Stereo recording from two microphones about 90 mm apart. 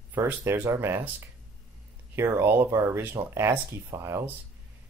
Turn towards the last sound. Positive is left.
turn(degrees=-30)  # may be behind; listen again after turning